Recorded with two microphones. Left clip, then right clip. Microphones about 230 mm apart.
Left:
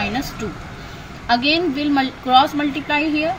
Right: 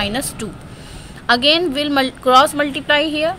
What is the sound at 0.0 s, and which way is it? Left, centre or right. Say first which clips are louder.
Speech: right 1 dB; right.